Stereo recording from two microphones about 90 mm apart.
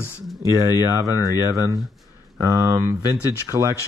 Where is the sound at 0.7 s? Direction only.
35° right (ahead or behind).